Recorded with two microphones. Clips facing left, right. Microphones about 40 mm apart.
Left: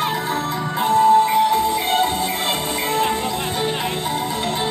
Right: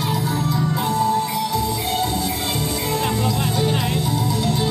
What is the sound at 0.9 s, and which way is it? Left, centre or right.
Music, left.